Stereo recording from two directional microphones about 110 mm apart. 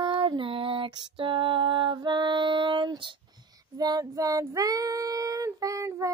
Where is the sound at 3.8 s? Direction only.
35° right (ahead or behind).